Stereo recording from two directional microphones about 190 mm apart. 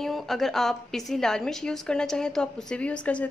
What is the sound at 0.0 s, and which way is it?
A woman's voice, centre (ahead or behind).